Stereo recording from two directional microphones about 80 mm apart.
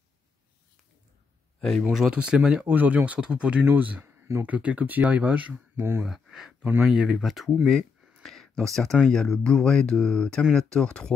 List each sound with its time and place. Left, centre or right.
1.6 s speech: centre
1.9 s speech: centre; by 6.0 s right
6.0 s speech: centre
6.6 s speech: right
6.9 s speech: centre
8.2 s a sound: centre
9.0 s speech: centre